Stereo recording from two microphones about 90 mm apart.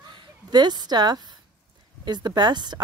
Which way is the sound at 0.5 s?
50° right (ahead or behind).